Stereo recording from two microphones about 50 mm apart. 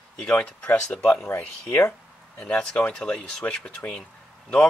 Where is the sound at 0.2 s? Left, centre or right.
Centre.